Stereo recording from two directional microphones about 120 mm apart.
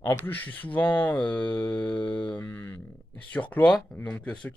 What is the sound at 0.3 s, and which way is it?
Speech, 15° left (ahead or behind).